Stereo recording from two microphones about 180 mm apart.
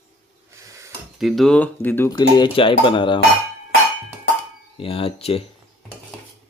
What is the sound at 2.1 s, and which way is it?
Speech, 25° left (ahead or behind).